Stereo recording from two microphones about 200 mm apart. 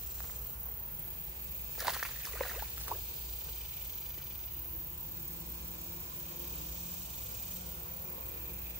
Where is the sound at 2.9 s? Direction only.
15° right (ahead or behind).